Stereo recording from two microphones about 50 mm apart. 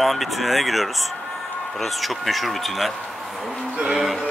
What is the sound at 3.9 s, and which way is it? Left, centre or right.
Speech, centre.